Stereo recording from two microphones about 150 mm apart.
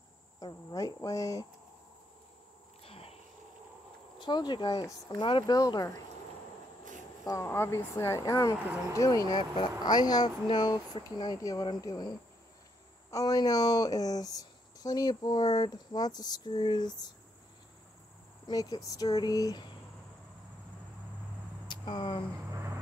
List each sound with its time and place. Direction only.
0.4 s speech: 25° left (ahead or behind)
2.8 s a sound: 40° left (ahead or behind)
4.2 s speech: 30° left (ahead or behind)
5.1 s speech: 35° left (ahead or behind)
7.2 s speech: 20° left (ahead or behind)
13.1 s speech: 25° left (ahead or behind)
18.5 s speech: 25° left (ahead or behind)
21.6 s speech: 30° left (ahead or behind)